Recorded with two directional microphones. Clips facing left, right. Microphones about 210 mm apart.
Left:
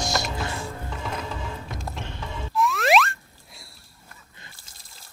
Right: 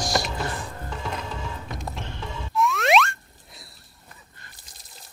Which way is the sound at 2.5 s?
Centre (ahead or behind).